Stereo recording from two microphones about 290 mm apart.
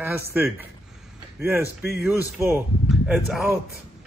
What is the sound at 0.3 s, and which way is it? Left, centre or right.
Speech, centre.